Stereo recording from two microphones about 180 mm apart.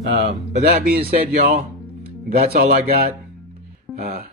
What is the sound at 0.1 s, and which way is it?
Speech, 40° right (ahead or behind).